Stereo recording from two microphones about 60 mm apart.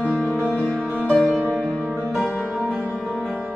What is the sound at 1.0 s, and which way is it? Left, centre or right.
Music, centre.